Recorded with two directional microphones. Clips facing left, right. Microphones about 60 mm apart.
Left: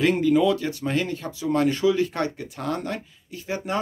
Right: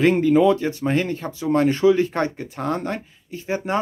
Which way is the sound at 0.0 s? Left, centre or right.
Right.